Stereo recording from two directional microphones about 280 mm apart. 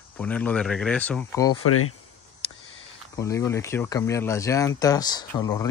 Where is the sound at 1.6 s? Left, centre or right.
Left.